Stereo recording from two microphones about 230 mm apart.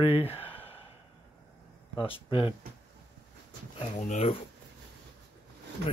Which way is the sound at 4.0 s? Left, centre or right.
Left.